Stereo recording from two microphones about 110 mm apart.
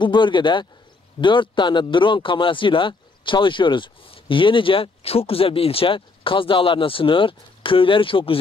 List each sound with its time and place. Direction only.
0.0 s a man's voice: 45° left (ahead or behind)